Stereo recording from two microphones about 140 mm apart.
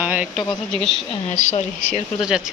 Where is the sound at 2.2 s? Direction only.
5° right (ahead or behind).